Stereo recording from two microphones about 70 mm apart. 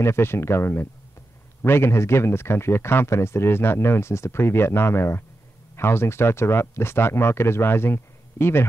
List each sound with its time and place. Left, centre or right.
0.0 s a man's voice: left